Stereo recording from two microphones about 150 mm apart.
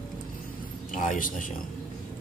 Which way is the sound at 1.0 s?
60° left (ahead or behind).